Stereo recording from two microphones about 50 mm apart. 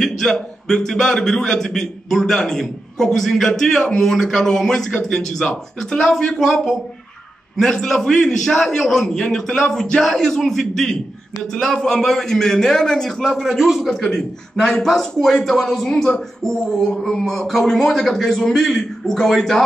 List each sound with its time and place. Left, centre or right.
0.0 s a man's voice: centre
13.2 s a man's voice: centre
14.1 s a man's voice: centre